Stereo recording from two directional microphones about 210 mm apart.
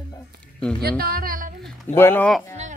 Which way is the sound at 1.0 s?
45° right (ahead or behind).